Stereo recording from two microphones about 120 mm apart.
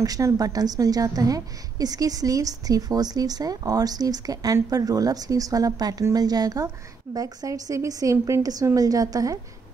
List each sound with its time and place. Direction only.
0.0 s a woman's voice: 30° right (ahead or behind)